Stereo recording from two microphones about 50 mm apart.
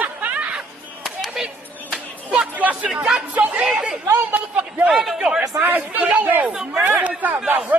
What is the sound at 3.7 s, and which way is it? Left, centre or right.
Chatter, centre.